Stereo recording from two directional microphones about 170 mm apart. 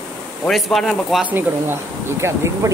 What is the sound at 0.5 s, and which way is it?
Speech, centre (ahead or behind).